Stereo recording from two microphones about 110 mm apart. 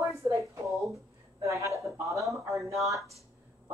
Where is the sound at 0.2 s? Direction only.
25° right (ahead or behind).